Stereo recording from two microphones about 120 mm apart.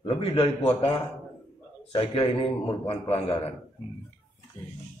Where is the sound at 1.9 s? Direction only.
50° left (ahead or behind).